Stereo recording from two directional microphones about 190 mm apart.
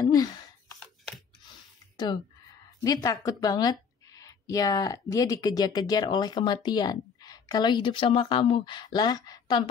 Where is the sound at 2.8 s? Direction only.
15° left (ahead or behind).